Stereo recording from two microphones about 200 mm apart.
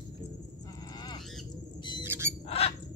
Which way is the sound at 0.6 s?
20° left (ahead or behind).